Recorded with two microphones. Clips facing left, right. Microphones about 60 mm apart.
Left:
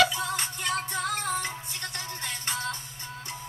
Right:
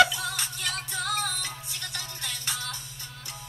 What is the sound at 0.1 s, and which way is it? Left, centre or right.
Music, left.